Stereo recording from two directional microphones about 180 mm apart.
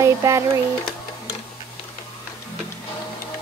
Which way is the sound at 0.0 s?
15° right (ahead or behind).